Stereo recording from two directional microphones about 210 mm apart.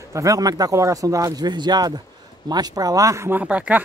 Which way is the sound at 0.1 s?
15° right (ahead or behind).